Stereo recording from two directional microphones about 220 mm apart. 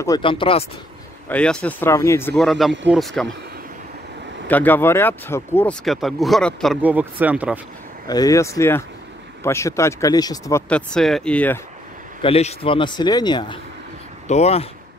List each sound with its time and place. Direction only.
0.0 s a man's voice: 20° left (ahead or behind)
1.3 s speech: 5° left (ahead or behind)
2.3 s speech: centre (ahead or behind)
4.5 s speech: 10° left (ahead or behind)
8.1 s speech: 15° left (ahead or behind)
10.7 s speech: 5° left (ahead or behind)
12.2 s a man's voice: 25° left (ahead or behind)
14.2 s a man's voice: 30° left (ahead or behind)